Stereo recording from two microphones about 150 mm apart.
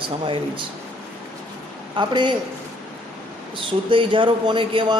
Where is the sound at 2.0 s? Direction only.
30° right (ahead or behind).